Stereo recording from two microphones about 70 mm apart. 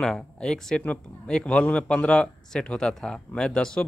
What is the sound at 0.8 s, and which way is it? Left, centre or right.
Speech, left.